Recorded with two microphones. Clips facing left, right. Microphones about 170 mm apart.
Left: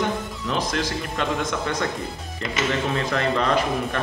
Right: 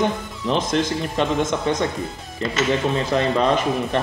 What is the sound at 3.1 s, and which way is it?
Speech, 20° right (ahead or behind).